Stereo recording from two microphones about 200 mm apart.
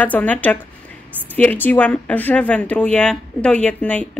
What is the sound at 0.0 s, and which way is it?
Speech, 5° left (ahead or behind).